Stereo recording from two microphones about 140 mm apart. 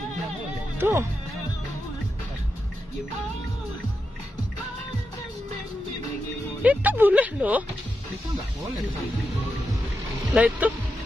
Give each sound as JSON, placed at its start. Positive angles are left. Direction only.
{"t": 0.7, "sound": "speech", "side_deg": -15}
{"t": 6.6, "sound": "speech", "side_deg": -10}
{"t": 10.3, "sound": "speech", "side_deg": -10}